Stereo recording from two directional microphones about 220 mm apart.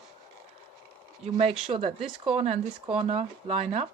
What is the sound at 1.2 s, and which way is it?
Speech, 30° right (ahead or behind).